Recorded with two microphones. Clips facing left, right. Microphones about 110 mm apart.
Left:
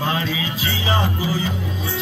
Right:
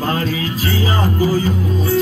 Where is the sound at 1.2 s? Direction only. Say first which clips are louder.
Right 7 dB; 45° right (ahead or behind).